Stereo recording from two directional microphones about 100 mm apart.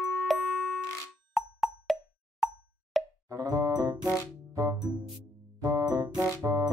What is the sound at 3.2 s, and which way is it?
Music, 40° right (ahead or behind).